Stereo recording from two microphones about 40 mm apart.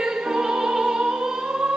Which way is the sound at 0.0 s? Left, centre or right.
Centre.